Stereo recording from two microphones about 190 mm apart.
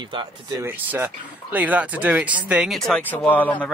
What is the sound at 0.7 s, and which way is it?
Speech, 10° right (ahead or behind).